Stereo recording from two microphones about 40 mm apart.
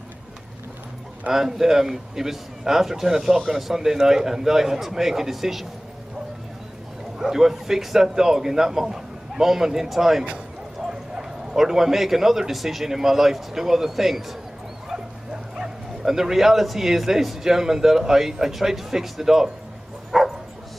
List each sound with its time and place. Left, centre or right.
1.3 s speech: centre
7.2 s speech: centre
15.6 s speech: centre
20.1 s dog: centre